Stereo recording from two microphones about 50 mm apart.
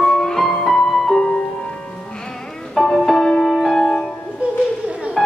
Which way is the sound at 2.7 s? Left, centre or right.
Centre.